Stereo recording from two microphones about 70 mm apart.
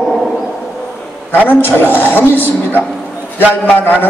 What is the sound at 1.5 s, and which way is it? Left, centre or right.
A man's voice, left.